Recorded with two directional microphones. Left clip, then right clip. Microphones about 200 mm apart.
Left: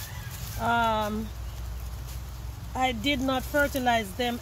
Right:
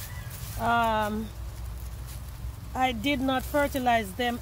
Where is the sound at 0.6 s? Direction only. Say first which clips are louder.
Even; 30° right (ahead or behind).